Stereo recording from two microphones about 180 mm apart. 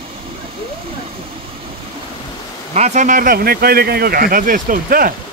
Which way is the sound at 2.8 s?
40° right (ahead or behind).